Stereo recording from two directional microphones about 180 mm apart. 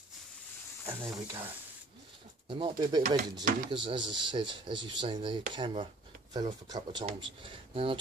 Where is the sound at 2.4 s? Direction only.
30° right (ahead or behind).